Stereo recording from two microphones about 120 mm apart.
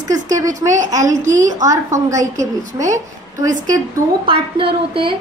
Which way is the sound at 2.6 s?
90° right.